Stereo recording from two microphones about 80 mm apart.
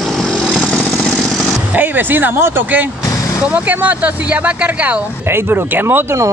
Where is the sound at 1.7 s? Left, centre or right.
Right.